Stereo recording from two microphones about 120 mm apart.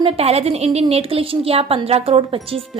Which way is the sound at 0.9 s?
50° right (ahead or behind).